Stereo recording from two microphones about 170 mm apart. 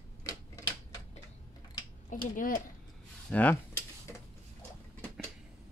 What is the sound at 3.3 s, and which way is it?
Dishes, 10° left (ahead or behind).